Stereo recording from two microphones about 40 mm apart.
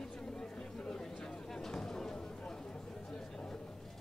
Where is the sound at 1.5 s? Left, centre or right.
Centre.